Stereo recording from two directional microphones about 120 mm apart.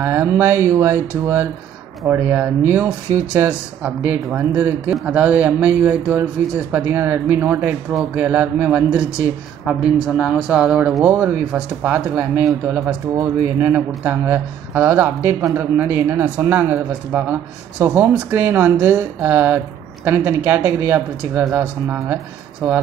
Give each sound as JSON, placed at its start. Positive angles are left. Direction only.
{"t": 0.0, "sound": "speech", "side_deg": -20}
{"t": 11.1, "sound": "speech", "side_deg": -15}